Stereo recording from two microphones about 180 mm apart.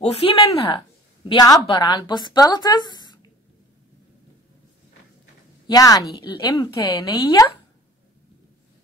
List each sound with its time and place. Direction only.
0.0 s speech: 35° left (ahead or behind)
1.3 s a woman's voice: 20° left (ahead or behind)
5.7 s a woman's voice: 20° left (ahead or behind)